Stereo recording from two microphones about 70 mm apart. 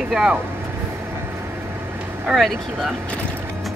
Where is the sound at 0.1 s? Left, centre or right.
Centre.